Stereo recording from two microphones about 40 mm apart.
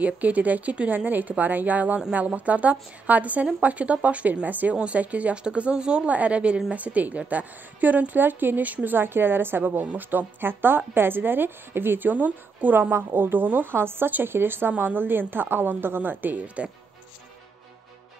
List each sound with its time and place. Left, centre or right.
0.0 s a woman's voice: right
5.3 s speech: right
6.0 s a woman's voice: right
8.9 s a woman's voice: right
13.1 s a woman's voice: right
13.7 s a woman's voice: right
16.0 s a woman's voice: right
16.6 s a woman's voice: right